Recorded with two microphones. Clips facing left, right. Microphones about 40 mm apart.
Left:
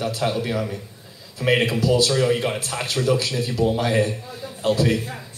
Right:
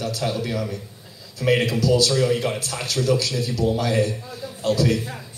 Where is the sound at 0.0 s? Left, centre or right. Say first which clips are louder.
Left 2 dB; left.